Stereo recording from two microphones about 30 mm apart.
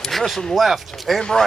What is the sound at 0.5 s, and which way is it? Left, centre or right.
Speech, centre.